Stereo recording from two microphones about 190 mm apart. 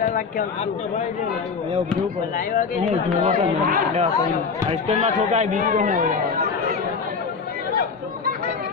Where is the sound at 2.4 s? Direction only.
45° left (ahead or behind).